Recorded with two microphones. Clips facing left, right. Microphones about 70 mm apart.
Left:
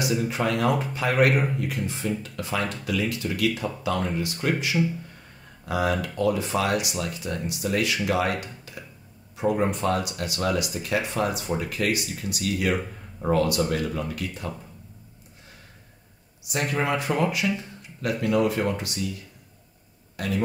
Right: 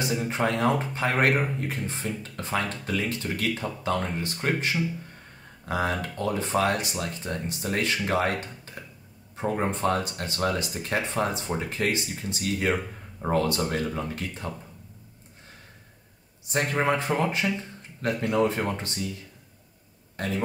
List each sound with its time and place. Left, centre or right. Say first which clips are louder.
0.0 s speech: left 1 dB; right
16.4 s speech: right 1 dB; right
20.2 s speech: left 1 dB; right